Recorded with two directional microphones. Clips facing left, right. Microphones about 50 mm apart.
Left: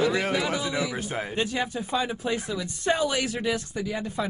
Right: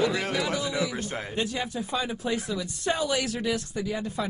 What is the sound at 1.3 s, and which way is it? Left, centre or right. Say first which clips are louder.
Speech: left 2 dB; left.